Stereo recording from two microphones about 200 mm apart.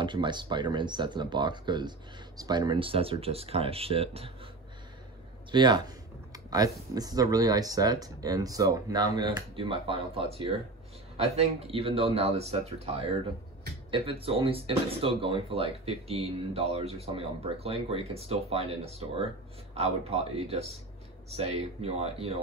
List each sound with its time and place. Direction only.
0.0 s speech: 25° right (ahead or behind)
5.5 s speech: 20° right (ahead or behind)